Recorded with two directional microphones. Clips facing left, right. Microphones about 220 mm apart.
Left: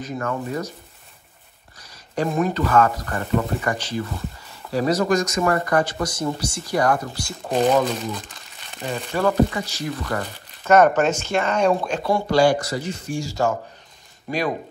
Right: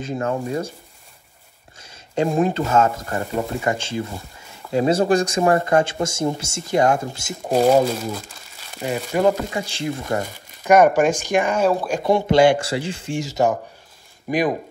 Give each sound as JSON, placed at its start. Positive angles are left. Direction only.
{"t": 0.0, "sound": "speech", "side_deg": -30}
{"t": 1.8, "sound": "speech", "side_deg": -25}
{"t": 7.4, "sound": "speech", "side_deg": -5}
{"t": 10.2, "sound": "speech", "side_deg": -10}
{"t": 12.0, "sound": "speech", "side_deg": -20}